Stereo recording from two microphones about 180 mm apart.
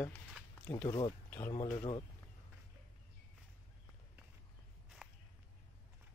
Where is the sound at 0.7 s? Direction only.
25° left (ahead or behind).